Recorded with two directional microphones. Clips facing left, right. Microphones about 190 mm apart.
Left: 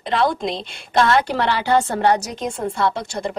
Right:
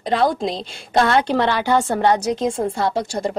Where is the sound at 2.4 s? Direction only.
30° right (ahead or behind).